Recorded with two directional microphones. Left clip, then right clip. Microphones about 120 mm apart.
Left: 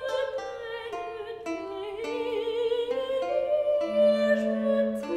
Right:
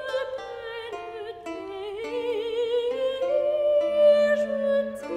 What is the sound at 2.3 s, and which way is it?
Music, 25° right (ahead or behind).